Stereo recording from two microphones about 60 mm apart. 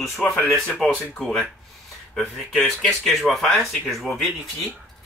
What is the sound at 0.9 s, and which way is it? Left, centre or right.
Speech, left.